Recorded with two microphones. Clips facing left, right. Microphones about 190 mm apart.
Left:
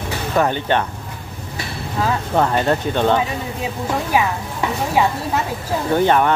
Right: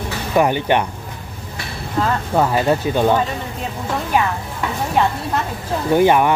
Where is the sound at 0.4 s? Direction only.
15° right (ahead or behind).